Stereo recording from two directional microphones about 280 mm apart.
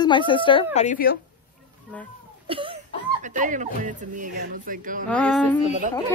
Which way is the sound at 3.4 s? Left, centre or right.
Right.